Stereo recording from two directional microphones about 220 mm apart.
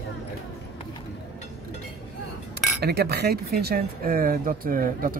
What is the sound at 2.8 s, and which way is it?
Speech, 45° right (ahead or behind).